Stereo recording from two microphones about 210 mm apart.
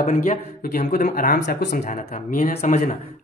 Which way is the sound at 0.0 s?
35° left (ahead or behind).